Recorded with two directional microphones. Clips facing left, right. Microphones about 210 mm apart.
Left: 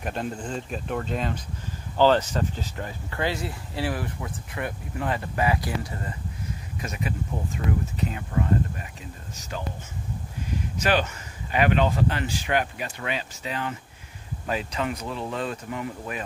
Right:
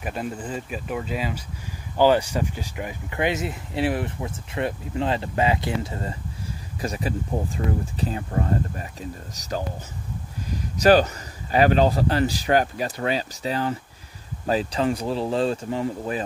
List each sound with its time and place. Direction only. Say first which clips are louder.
0.0 s speech: right 1 dB; 5° right (ahead or behind); by 16.2 s 30° right (ahead or behind)